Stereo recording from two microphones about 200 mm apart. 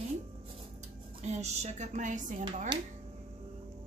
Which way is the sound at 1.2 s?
35° right (ahead or behind).